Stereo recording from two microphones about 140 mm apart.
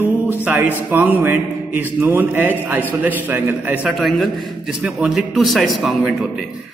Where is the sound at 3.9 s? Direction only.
Centre (ahead or behind).